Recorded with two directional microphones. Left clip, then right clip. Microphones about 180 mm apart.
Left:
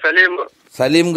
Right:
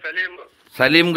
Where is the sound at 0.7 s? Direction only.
30° left (ahead or behind).